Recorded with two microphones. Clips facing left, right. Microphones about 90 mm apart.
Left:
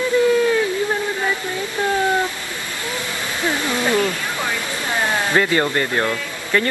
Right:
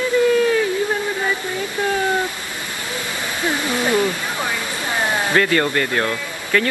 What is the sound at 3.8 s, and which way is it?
Speech, 15° right (ahead or behind).